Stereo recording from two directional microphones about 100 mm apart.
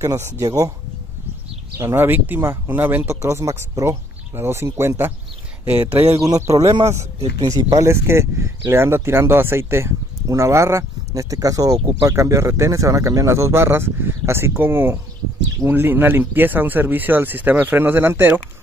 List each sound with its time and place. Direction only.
0.0 s speech: 30° right (ahead or behind)
1.8 s speech: 20° right (ahead or behind)
6.2 s speech: 35° right (ahead or behind)
7.7 s speech: 30° right (ahead or behind)